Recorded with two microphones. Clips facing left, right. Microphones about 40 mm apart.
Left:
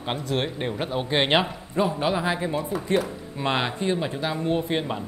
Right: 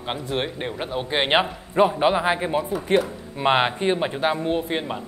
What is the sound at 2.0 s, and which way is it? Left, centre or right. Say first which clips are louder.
Speech: right 4 dB; right.